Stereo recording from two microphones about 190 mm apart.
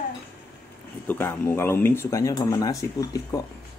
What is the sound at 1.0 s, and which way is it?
Speech, 10° left (ahead or behind).